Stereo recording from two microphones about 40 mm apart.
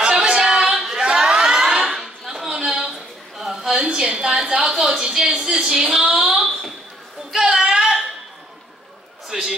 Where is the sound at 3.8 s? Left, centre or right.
Right.